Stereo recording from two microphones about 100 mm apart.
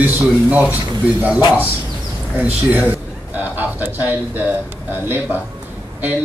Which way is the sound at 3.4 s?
20° right (ahead or behind).